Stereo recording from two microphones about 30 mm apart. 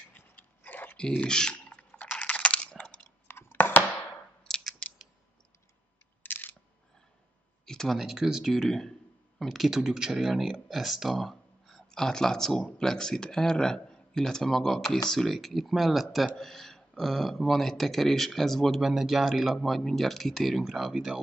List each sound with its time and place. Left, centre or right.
0.1 s a sound: left
0.9 s typing: left
2.1 s a sound: left
4.5 s scissors: centre
7.6 s a sound: centre
8.0 s speech: centre
8.5 s speech: centre
9.4 s speech: centre
9.7 s speech: centre
11.1 s speech: centre
16.3 s speech: centre
18.8 s speech: centre
20.9 s speech: centre